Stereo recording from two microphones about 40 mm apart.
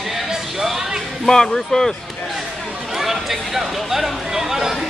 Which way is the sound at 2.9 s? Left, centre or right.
Centre.